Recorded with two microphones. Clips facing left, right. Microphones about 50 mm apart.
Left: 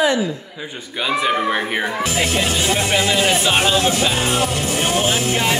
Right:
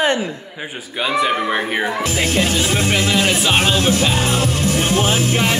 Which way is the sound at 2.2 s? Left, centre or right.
Left.